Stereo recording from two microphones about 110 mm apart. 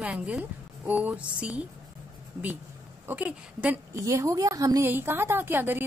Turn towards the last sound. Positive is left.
turn(degrees=-20)  # may be behind; listen again after turning